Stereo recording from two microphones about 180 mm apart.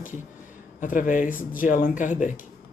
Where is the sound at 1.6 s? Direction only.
50° left (ahead or behind).